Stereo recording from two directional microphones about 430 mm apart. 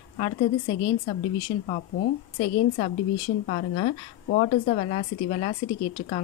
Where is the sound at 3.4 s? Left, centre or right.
Centre.